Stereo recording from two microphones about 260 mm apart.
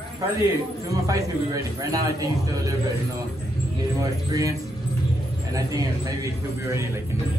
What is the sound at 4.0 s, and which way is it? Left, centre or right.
Speech, centre.